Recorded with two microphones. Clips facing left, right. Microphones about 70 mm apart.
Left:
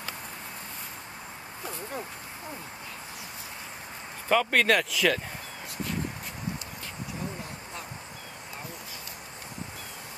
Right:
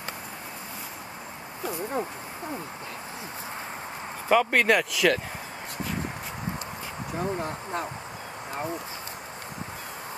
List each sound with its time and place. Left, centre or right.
1.7 s speech: right
4.3 s speech: centre
7.2 s speech: right